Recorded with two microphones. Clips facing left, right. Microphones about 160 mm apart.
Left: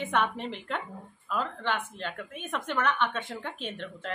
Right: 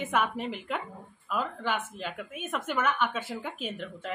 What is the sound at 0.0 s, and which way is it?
A woman's voice, 5° right (ahead or behind).